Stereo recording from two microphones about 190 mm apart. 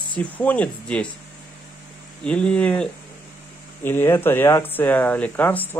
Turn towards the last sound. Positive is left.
turn(degrees=10)  # may be behind; listen again after turning